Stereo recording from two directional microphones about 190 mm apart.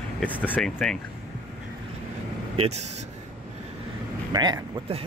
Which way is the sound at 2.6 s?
35° right (ahead or behind).